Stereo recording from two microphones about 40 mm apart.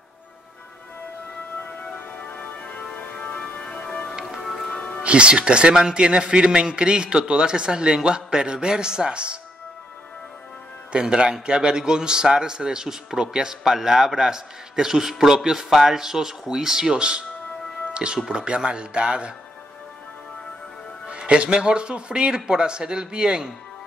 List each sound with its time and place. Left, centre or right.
3.2 s music: left
4.5 s music: centre
4.7 s music: left
5.0 s a man's voice: right
10.9 s a man's voice: right
21.2 s a man's voice: right